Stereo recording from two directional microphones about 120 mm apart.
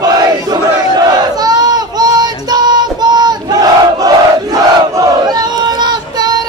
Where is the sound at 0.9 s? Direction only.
35° right (ahead or behind).